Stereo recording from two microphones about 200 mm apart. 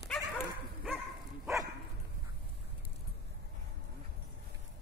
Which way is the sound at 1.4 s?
15° right (ahead or behind).